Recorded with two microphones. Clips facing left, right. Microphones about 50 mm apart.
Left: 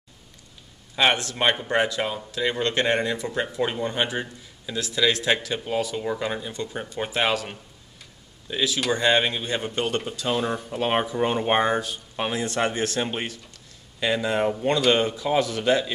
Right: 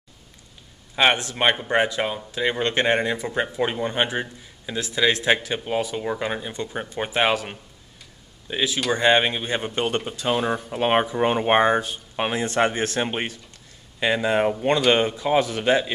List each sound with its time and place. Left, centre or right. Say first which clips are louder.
0.9 s speech: right 2 dB; right